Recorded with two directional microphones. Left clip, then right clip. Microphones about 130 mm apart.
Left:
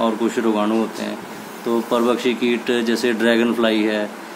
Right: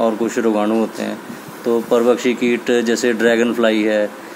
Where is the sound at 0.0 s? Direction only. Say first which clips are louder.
Right 3 dB; 40° right (ahead or behind).